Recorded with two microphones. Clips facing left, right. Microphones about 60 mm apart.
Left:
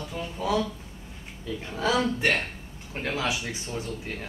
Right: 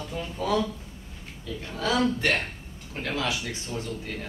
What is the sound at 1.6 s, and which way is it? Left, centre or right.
Speech, centre.